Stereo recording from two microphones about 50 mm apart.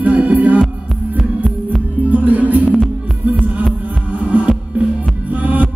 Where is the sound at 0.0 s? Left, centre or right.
Right.